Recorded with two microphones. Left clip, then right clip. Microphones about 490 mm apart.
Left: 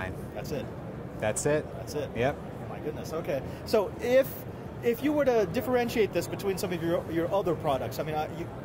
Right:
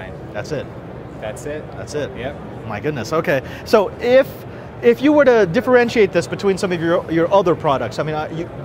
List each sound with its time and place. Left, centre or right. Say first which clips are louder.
0.4 s speech: right 11 dB; right
1.2 s speech: even; left
2.0 s speech: right 10 dB; right
3.0 s speech: right 14 dB; right
3.7 s speech: right 11 dB; right
4.8 s speech: right 14 dB; right